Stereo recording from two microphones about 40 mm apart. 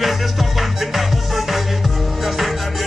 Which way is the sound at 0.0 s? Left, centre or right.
Centre.